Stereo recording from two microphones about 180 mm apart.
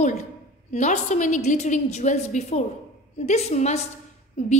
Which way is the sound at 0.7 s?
40° left (ahead or behind).